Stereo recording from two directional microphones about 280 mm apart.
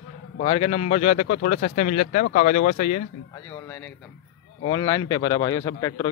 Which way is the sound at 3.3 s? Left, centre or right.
Centre.